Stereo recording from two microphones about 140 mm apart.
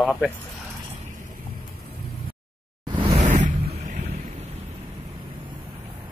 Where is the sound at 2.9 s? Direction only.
40° right (ahead or behind).